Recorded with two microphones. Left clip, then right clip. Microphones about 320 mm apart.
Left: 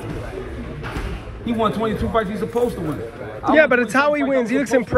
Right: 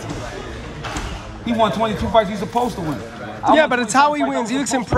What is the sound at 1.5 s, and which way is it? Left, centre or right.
Speech, right.